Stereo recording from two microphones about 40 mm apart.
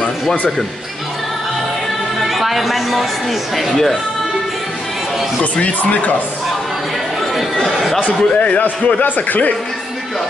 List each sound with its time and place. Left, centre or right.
2.2 s a sound: centre
3.5 s speech: centre
5.4 s speech: left
7.3 s speech: centre
8.0 s a man's voice: left
9.0 s speech: left